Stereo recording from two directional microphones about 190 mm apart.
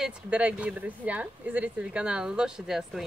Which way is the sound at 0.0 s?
5° right (ahead or behind).